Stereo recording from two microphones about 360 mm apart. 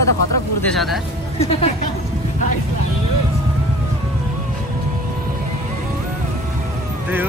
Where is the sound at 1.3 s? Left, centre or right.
Centre.